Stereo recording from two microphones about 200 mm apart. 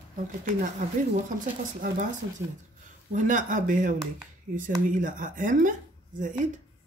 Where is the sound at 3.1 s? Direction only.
40° right (ahead or behind).